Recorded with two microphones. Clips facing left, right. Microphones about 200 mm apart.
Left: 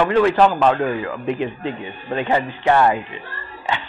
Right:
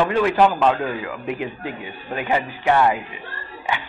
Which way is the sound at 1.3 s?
25° left (ahead or behind).